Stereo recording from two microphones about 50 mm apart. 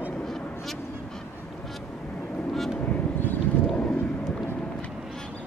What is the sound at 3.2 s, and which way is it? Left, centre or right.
Vehicle, left.